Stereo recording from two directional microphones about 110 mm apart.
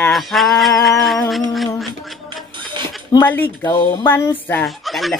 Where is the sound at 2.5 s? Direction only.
45° right (ahead or behind).